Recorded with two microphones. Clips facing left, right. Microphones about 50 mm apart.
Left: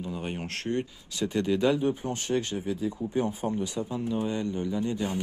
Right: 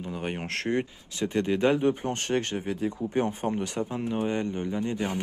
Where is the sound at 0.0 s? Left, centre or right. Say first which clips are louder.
Right 1 dB; right.